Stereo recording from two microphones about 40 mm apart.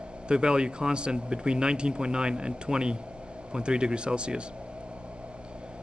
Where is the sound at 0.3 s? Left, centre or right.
Right.